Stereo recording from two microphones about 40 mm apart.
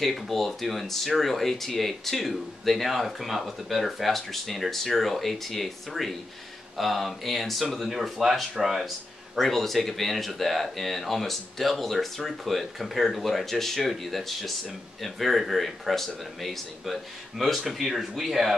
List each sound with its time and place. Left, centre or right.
0.0 s speech: centre